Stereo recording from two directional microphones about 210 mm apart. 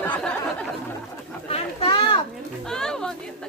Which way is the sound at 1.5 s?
25° left (ahead or behind).